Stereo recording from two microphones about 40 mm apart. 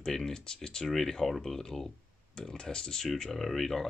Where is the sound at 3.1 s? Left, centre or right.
Centre.